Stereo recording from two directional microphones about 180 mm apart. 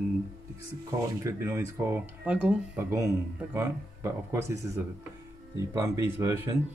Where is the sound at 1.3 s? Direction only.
15° right (ahead or behind).